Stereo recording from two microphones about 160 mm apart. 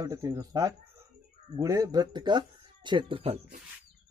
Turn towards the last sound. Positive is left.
turn(degrees=-35)  # may be behind; listen again after turning